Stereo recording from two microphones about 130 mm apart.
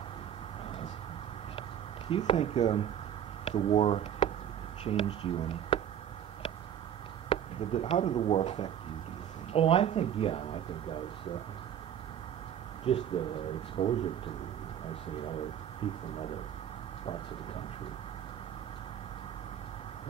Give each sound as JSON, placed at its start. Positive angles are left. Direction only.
{"t": 2.0, "sound": "speech", "side_deg": 45}
{"t": 7.2, "sound": "speech", "side_deg": 45}
{"t": 13.2, "sound": "speech", "side_deg": 45}
{"t": 15.8, "sound": "speech", "side_deg": 45}